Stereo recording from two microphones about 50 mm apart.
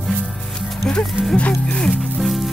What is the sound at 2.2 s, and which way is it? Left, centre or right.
Music, centre.